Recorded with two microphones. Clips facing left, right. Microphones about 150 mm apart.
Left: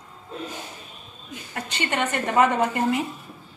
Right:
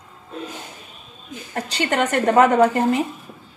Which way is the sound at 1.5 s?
40° right (ahead or behind).